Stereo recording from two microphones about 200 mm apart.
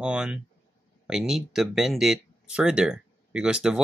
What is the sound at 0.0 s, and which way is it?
Speech, 5° right (ahead or behind).